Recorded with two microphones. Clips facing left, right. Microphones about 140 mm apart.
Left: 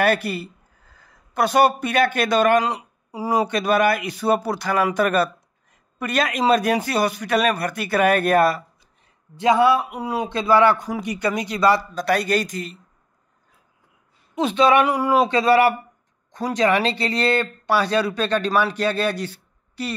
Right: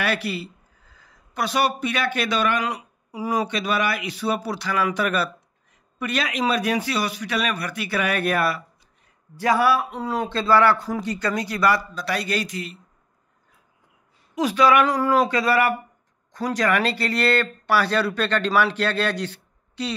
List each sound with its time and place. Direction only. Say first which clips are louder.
0.0 s a man's voice: left 5 dB; 50° left (ahead or behind)
2.6 s speech: left 3 dB; 35° left (ahead or behind)
3.4 s speech: left 5 dB; 50° left (ahead or behind)
9.4 s speech: left 3 dB; 20° left (ahead or behind)
11.9 s speech: left 6 dB; 45° left (ahead or behind)
14.3 s speech: left 1 dB; 25° left (ahead or behind)
14.9 s speech: left 1 dB; 15° left (ahead or behind)
15.2 s speech: left 4 dB; 25° left (ahead or behind); by 19.9 s 10° left (ahead or behind)